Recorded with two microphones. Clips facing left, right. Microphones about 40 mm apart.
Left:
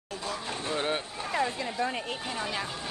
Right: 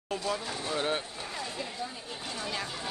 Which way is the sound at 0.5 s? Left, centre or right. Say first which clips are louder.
Left 1 dB; left.